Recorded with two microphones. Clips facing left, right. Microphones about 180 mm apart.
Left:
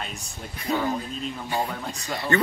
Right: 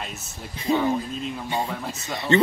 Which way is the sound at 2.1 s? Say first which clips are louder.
Right 4 dB; 25° right (ahead or behind).